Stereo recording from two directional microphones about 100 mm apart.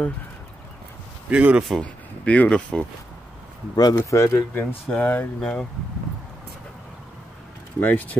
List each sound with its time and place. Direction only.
1.3 s a man's voice: 15° right (ahead or behind)
1.6 s speech: centre (ahead or behind)
2.2 s speech: 15° left (ahead or behind)
3.7 s speech: 35° left (ahead or behind)
4.9 s speech: 15° left (ahead or behind)
7.8 s speech: 15° left (ahead or behind)